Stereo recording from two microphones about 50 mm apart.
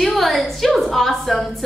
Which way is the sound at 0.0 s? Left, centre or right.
Centre.